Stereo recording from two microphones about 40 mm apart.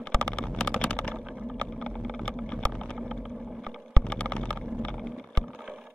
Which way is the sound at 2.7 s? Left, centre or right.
Centre.